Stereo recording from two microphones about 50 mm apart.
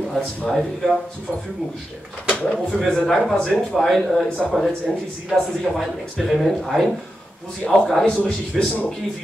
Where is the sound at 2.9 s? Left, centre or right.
Centre.